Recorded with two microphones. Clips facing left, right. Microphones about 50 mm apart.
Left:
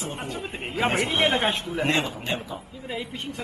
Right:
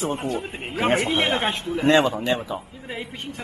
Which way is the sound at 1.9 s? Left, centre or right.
Right.